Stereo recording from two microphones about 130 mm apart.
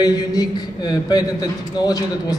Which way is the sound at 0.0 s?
30° left (ahead or behind).